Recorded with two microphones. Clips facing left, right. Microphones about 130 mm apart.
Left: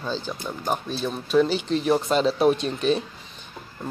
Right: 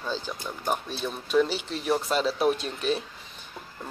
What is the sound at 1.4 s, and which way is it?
Speech, 10° right (ahead or behind).